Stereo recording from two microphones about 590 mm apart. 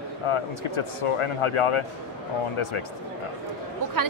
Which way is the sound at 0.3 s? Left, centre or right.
Left.